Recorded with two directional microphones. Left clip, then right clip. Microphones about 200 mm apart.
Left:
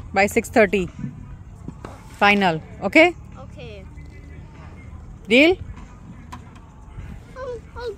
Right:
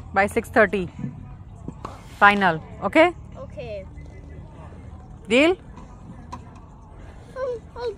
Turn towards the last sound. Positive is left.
turn(degrees=10)  # may be behind; listen again after turning